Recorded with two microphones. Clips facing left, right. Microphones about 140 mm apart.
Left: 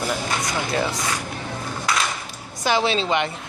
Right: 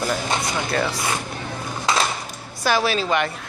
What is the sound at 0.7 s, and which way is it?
Speech, 20° left (ahead or behind).